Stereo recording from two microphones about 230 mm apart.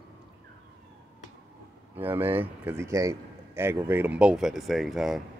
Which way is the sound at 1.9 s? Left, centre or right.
Centre.